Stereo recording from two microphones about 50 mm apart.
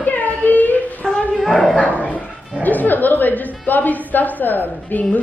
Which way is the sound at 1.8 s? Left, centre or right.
Left.